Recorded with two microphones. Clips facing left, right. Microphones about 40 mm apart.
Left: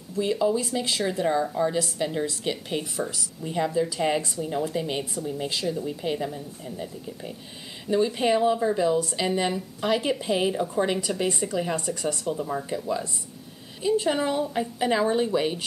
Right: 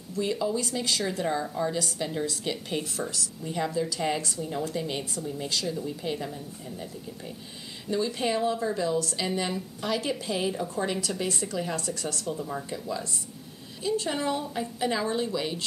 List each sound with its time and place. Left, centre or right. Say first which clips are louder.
0.1 s a woman's voice: left 4 dB; centre